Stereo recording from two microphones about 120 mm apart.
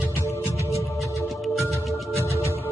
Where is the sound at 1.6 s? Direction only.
25° left (ahead or behind).